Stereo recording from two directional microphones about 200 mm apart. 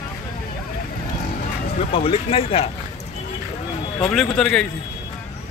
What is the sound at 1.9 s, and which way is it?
Speech, 30° left (ahead or behind).